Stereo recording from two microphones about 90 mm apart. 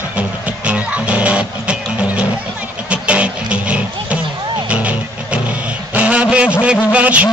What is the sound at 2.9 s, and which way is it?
Music, 15° right (ahead or behind).